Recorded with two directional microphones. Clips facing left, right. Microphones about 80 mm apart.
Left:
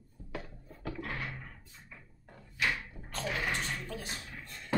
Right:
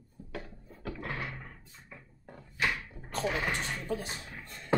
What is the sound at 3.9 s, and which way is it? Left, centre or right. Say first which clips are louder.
Speech: right 7 dB; centre.